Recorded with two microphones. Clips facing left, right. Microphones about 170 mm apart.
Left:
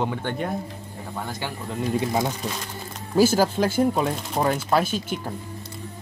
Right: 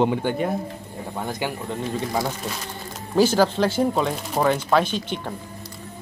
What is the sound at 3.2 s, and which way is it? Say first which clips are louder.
Speech: right 1 dB; 10° left (ahead or behind).